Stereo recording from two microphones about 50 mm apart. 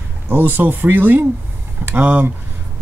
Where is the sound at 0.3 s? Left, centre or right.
Right.